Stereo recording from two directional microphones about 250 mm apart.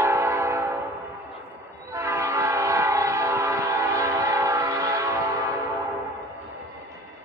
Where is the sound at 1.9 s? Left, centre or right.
Centre.